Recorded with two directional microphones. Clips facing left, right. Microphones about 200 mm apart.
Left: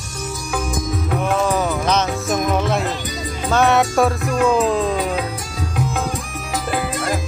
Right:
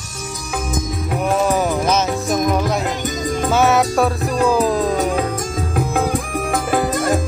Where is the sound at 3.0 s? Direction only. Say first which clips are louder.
Right 6 dB; 45° right (ahead or behind).